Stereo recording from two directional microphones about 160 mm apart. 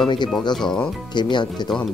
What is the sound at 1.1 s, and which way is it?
Speech, 30° left (ahead or behind).